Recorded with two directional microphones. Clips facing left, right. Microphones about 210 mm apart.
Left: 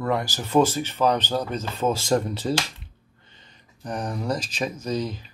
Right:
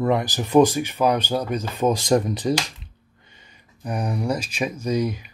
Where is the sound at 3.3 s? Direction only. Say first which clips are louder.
Right 1 dB; 10° right (ahead or behind).